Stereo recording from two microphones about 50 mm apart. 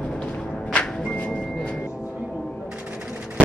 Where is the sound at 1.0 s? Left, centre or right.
Left.